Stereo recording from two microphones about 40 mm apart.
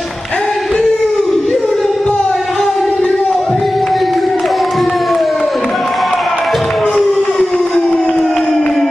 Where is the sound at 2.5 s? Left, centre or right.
Centre.